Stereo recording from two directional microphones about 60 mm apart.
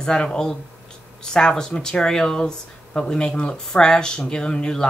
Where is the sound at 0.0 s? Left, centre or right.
Centre.